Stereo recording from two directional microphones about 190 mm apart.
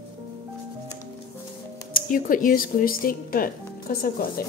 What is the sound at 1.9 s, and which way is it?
Speech, 45° left (ahead or behind).